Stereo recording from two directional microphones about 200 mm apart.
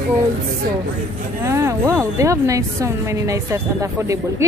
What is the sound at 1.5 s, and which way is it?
Speech, 15° right (ahead or behind).